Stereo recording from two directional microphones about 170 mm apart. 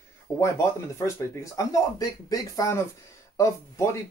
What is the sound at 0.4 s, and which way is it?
Speech, 15° left (ahead or behind).